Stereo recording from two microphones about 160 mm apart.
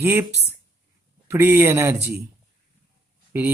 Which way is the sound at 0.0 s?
15° right (ahead or behind).